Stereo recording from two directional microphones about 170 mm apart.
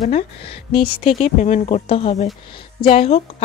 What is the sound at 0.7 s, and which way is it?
Speech, 30° left (ahead or behind).